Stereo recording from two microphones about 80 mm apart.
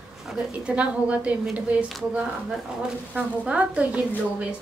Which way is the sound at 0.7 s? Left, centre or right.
Centre.